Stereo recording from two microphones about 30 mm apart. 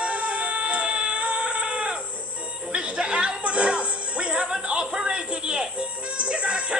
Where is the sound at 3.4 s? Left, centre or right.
Right.